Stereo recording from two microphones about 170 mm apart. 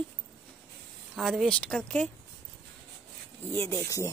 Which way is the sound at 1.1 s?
Centre (ahead or behind).